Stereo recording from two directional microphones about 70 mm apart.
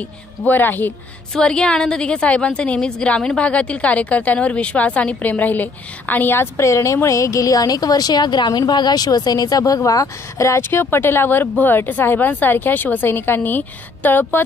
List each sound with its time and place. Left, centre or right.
0.4 s a woman's voice: left
1.3 s a woman's voice: centre